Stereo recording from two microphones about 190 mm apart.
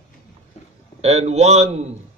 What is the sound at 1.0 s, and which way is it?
Speech, 35° right (ahead or behind).